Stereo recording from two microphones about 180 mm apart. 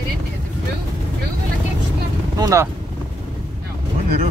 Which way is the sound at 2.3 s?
20° right (ahead or behind).